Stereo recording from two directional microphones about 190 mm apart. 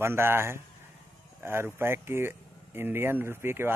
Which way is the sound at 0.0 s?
10° right (ahead or behind).